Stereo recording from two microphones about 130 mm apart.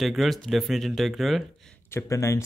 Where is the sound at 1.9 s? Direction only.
20° left (ahead or behind).